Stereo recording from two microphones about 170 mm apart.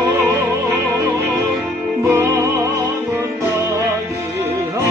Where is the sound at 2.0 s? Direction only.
15° right (ahead or behind).